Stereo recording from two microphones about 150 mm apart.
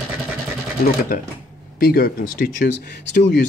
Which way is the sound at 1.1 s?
75° left (ahead or behind).